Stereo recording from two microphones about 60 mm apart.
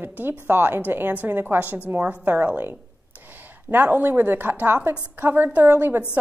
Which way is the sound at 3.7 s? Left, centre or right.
Right.